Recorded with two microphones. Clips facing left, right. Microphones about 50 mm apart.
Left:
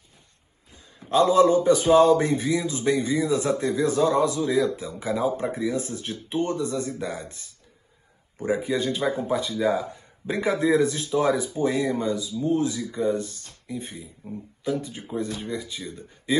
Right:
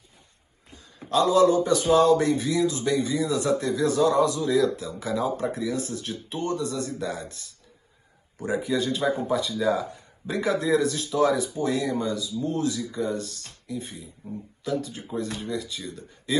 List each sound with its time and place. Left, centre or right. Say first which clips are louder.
1.1 s a man's voice: left 1 dB; left